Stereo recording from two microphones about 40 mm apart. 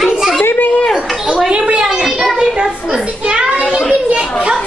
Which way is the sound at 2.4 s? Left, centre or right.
Right.